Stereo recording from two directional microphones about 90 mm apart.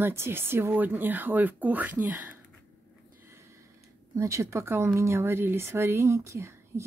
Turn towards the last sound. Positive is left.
turn(degrees=-30)  # may be behind; listen again after turning